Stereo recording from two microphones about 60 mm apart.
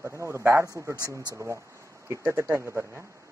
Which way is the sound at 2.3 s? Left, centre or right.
Right.